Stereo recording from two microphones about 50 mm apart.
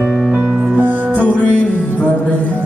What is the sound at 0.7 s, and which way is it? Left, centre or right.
Music, right.